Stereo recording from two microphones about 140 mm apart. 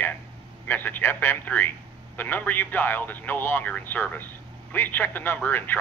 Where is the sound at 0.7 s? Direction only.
15° left (ahead or behind).